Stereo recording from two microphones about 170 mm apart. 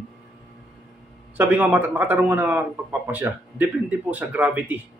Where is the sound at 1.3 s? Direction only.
10° right (ahead or behind).